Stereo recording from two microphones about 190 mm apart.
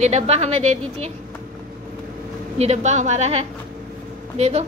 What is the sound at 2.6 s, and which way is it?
A woman's voice, 35° right (ahead or behind).